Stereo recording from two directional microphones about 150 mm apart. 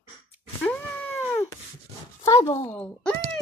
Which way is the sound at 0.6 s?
10° left (ahead or behind).